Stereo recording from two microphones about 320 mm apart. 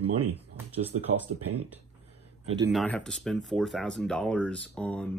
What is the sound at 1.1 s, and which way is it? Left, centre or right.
Speech, right.